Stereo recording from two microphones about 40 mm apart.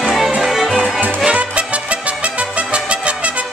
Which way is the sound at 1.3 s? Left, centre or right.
Right.